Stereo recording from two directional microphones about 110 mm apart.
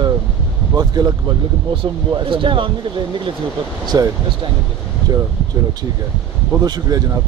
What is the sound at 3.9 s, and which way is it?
Speech, 35° right (ahead or behind).